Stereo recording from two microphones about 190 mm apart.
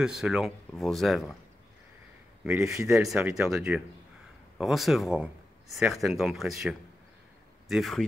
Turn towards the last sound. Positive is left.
turn(degrees=0)  # may be behind; listen again after turning